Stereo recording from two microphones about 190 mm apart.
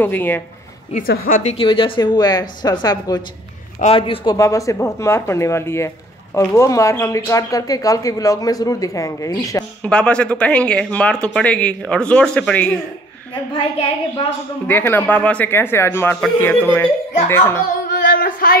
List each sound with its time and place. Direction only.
0.0 s speech: 10° left (ahead or behind)
1.0 s a woman's voice: 50° left (ahead or behind)
1.5 s speech: 25° left (ahead or behind)
9.8 s speech: 5° left (ahead or behind)
13.3 s speech: 30° left (ahead or behind)
14.7 s speech: 10° left (ahead or behind)
18.0 s a sound: 50° left (ahead or behind)